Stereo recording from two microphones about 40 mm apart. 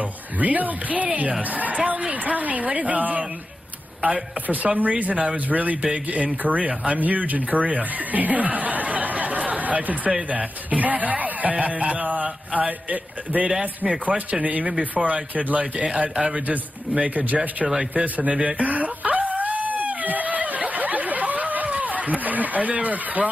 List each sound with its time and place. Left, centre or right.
0.4 s speech: right
4.7 s speech: right
6.7 s a man's voice: right
7.0 s speech: right
15.6 s a man's voice: right
16.9 s speech: right
18.6 s a sound: right
21.6 s run: right